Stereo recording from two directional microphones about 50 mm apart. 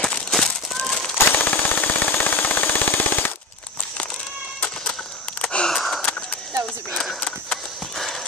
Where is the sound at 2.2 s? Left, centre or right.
Left.